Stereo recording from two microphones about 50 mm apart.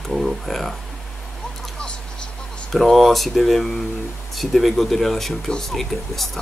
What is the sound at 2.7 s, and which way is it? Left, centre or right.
Speech, centre.